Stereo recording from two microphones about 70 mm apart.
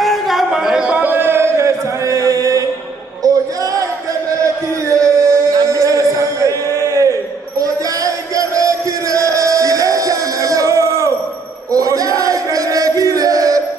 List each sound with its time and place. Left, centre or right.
0.0 s a sound: centre; by 3.4 s right
4.8 s music: right
11.7 s chant: right